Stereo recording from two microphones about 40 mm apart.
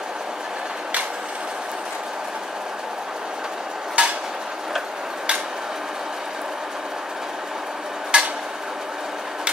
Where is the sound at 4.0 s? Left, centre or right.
Right.